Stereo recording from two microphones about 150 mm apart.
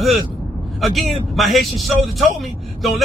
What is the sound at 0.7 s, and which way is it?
A man's voice, centre (ahead or behind).